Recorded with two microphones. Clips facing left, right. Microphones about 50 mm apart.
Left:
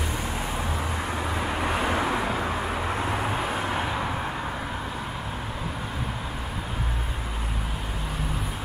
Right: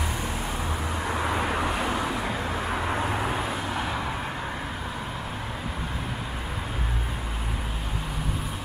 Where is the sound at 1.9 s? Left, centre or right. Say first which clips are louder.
Left 3 dB; left.